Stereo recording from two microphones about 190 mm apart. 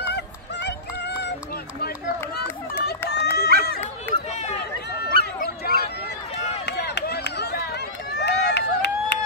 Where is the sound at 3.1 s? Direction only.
60° left (ahead or behind).